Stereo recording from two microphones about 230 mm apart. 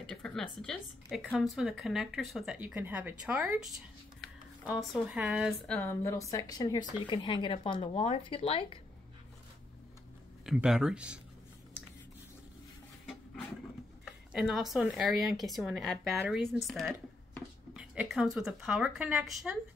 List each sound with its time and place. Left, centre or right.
0.1 s speech: centre; by 8.7 s left
10.4 s speech: centre
14.0 s speech: centre